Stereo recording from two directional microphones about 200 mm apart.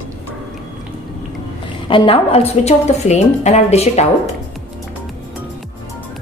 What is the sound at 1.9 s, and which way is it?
A woman's voice, 25° left (ahead or behind).